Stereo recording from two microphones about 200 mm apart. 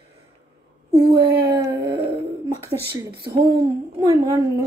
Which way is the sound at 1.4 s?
15° right (ahead or behind).